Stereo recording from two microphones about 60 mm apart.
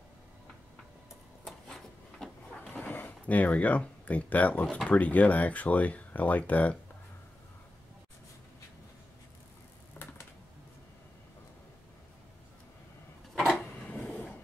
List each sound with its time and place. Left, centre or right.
1.4 s printer: centre
2.7 s speech: left
13.3 s a sound: centre